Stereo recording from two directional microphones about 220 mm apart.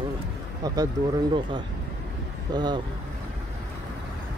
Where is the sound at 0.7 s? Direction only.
15° right (ahead or behind).